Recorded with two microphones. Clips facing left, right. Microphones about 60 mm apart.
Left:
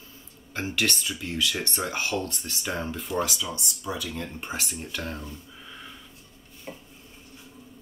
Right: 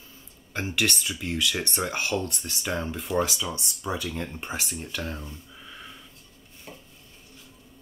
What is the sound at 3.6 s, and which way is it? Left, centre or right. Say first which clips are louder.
Speech: right 2 dB; right.